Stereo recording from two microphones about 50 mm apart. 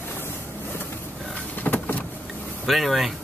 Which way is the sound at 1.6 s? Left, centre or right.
Left.